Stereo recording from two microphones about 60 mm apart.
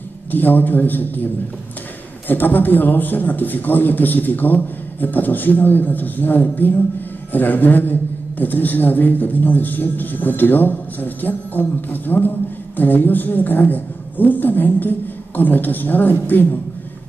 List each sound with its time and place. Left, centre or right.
0.3 s a man's voice: left
2.2 s a man's voice: left